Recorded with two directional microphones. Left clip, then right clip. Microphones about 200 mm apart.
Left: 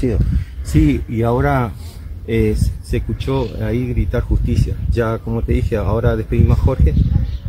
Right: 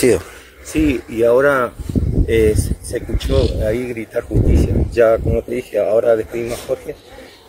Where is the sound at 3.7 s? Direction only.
5° left (ahead or behind).